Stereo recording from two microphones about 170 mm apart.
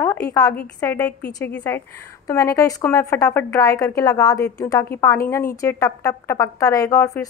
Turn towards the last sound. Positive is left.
turn(degrees=20)  # may be behind; listen again after turning